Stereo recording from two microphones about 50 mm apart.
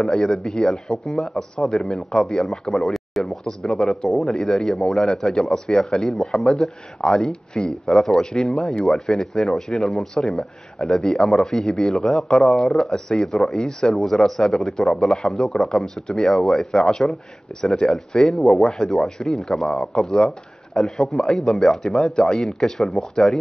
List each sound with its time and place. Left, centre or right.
0.0 s speech: centre
2.9 s speech: centre
3.6 s speech: centre